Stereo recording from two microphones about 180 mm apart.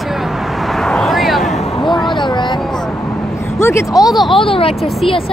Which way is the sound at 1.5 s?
30° left (ahead or behind).